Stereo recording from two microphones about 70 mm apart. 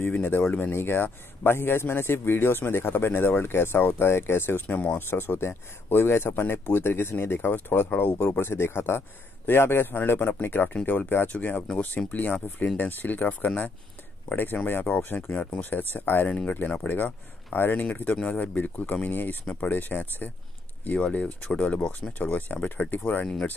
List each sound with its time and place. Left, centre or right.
0.0 s a man's voice: left
16.3 s speech: centre